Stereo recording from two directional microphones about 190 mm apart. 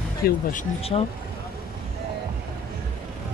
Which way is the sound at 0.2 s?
45° left (ahead or behind).